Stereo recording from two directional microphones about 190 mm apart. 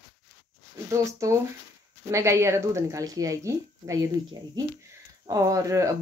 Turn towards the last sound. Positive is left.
turn(degrees=-15)  # may be behind; listen again after turning